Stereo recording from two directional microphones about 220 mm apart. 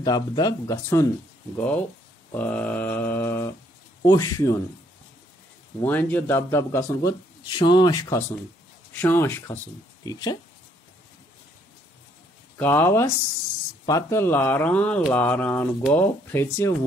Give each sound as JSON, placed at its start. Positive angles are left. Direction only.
{"t": 0.0, "sound": "speech", "side_deg": 15}
{"t": 5.9, "sound": "speech", "side_deg": 10}
{"t": 12.5, "sound": "speech", "side_deg": 10}